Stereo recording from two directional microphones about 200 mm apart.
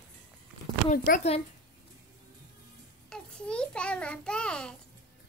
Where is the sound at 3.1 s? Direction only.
5° left (ahead or behind).